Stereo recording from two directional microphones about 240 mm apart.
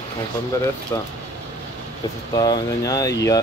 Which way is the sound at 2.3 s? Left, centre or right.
Centre.